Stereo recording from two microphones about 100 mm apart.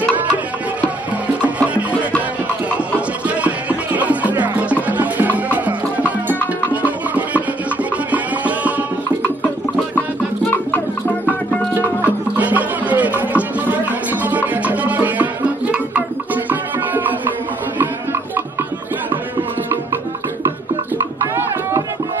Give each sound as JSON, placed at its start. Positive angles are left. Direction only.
{"t": 0.7, "sound": "music", "side_deg": -15}
{"t": 3.3, "sound": "music", "side_deg": -15}
{"t": 12.4, "sound": "music", "side_deg": -15}